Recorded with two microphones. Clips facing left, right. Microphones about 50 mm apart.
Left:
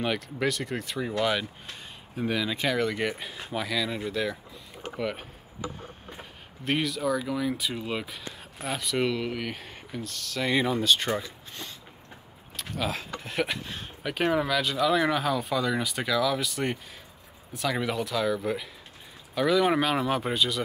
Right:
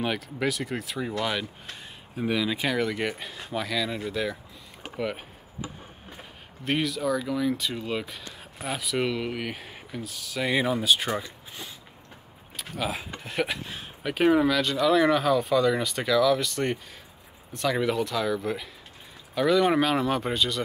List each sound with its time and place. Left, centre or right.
0.0 s speech: centre